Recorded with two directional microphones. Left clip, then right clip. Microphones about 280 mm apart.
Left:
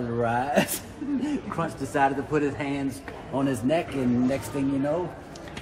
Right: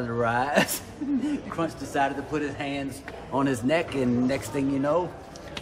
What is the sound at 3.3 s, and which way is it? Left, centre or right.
Speech, centre.